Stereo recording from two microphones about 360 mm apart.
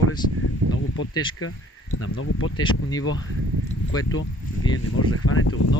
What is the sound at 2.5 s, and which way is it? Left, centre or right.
Speech, centre.